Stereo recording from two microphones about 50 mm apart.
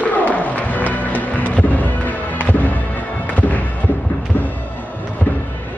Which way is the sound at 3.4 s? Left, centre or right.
Left.